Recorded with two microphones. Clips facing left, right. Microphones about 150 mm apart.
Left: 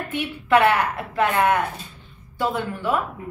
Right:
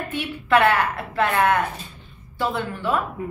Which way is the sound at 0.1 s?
15° left (ahead or behind).